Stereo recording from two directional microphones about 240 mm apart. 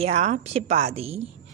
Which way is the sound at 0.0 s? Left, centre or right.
Right.